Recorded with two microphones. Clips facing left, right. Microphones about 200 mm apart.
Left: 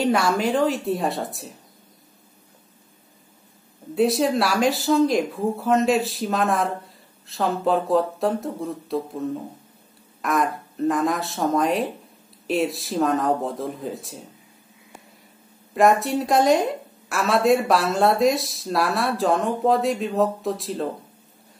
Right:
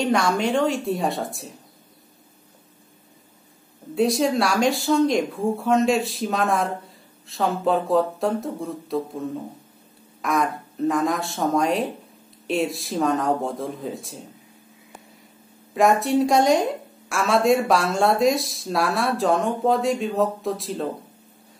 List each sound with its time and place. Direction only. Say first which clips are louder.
0.0 s a woman's voice: left 1 dB; 5° left (ahead or behind)
3.9 s a woman's voice: even; centre (ahead or behind)
10.2 s a woman's voice: even; centre (ahead or behind)
15.7 s a woman's voice: even; centre (ahead or behind)